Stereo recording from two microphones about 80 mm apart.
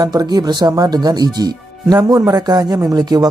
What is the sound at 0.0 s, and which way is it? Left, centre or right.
Speech, right.